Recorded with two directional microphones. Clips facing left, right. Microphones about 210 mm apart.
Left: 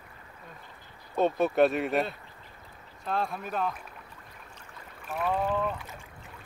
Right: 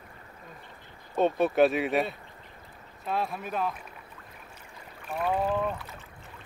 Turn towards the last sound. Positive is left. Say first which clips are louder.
# right 1 dB
turn(degrees=-5)  # may be behind; listen again after turning